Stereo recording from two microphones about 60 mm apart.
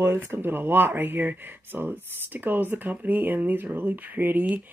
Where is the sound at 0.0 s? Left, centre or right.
Right.